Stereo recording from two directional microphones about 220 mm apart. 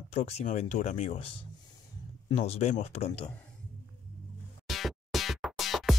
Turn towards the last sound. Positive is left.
turn(degrees=0)  # may be behind; listen again after turning